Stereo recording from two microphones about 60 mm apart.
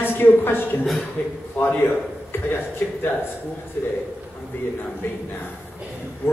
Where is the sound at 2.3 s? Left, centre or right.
Left.